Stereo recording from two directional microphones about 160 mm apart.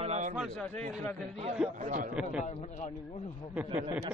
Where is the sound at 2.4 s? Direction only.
45° left (ahead or behind).